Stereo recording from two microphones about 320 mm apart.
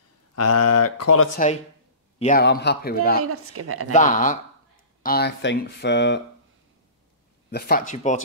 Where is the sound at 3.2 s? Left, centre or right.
Right.